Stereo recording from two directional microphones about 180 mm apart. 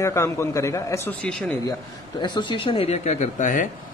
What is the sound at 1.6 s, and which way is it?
Speech, 20° left (ahead or behind).